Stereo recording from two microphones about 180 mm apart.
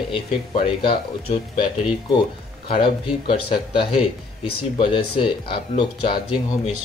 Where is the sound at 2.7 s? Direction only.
30° left (ahead or behind).